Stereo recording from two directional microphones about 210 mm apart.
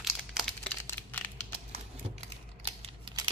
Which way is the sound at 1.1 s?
10° left (ahead or behind).